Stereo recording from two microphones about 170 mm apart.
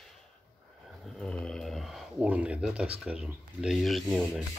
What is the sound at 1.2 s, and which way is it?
Speech, 5° left (ahead or behind).